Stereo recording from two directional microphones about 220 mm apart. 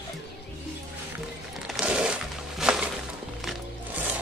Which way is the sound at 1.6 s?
Centre (ahead or behind).